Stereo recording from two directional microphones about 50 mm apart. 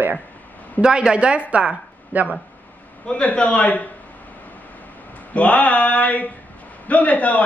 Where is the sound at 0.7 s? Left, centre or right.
Centre.